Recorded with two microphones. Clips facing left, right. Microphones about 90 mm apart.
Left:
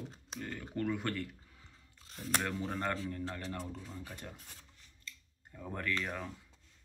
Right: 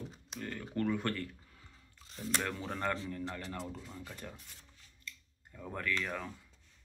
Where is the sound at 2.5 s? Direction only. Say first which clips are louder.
Even; 30° left (ahead or behind).